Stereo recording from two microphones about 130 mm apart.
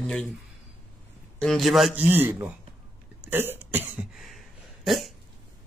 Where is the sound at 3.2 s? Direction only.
15° right (ahead or behind).